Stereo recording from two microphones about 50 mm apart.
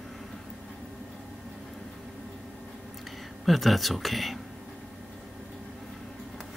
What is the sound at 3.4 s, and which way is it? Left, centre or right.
Speech, centre.